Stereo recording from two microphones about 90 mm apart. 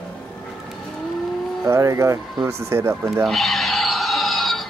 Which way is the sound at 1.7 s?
35° right (ahead or behind).